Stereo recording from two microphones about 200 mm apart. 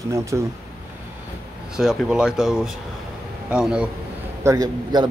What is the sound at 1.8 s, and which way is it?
Speech, centre (ahead or behind).